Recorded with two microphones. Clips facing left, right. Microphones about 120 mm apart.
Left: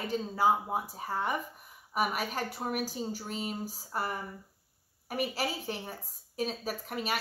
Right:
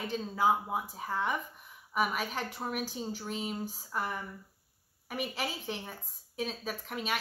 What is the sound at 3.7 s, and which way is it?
Speech, 40° left (ahead or behind).